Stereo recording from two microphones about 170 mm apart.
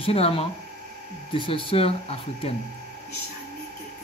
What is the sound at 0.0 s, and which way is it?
Speech, 35° left (ahead or behind).